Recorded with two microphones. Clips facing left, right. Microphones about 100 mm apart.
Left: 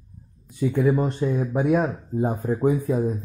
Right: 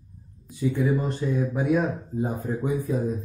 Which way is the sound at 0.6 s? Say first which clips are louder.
Left 3 dB; 40° left (ahead or behind).